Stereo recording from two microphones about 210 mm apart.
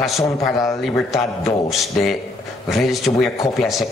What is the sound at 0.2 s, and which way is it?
Speech, 15° left (ahead or behind).